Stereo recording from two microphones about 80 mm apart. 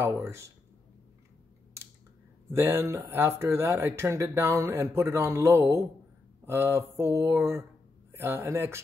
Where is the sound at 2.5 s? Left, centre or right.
Right.